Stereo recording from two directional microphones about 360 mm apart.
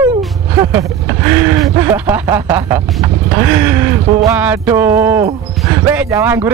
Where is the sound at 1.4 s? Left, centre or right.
Centre.